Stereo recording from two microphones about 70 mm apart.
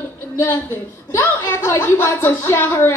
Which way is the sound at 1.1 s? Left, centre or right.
Left.